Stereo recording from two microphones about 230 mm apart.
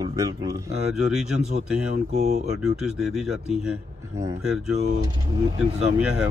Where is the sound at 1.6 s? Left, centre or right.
Right.